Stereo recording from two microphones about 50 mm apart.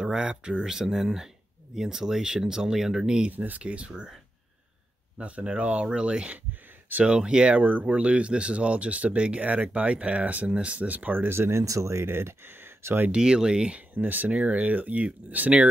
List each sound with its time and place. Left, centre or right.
0.0 s speech: centre
3.3 s speech: right
5.2 s speech: right
11.2 s speech: right
12.1 s speech: right
13.1 s speech: centre
13.7 s speech: right